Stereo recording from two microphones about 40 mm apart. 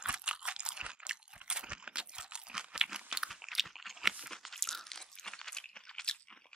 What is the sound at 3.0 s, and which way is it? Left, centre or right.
Crunch, centre.